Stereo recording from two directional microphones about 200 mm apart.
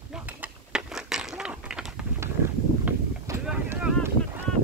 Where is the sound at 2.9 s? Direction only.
15° right (ahead or behind).